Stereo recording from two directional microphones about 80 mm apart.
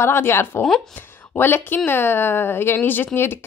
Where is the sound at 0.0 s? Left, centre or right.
Left.